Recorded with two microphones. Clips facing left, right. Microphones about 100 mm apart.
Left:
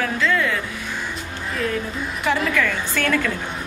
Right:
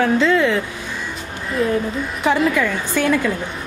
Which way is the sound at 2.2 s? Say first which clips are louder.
Right 4 dB; 20° right (ahead or behind).